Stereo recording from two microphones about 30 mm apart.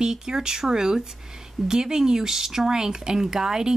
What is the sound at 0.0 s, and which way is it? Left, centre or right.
Speech, centre.